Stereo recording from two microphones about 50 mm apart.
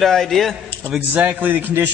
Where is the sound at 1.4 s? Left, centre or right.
Right.